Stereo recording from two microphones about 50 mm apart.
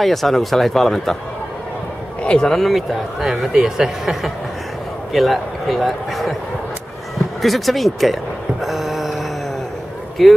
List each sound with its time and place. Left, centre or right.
0.0 s a man's voice: centre
2.2 s speech: centre
2.5 s a man's voice: centre
7.4 s speech: centre
10.2 s a man's voice: centre